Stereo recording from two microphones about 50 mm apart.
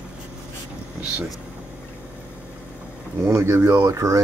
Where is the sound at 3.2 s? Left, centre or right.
Right.